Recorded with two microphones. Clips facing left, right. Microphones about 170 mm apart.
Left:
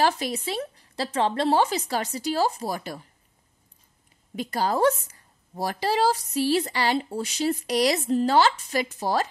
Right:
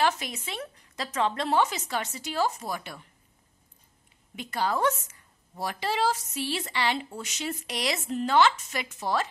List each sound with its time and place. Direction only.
0.0 s a woman's voice: 35° left (ahead or behind)
4.4 s a woman's voice: 35° left (ahead or behind)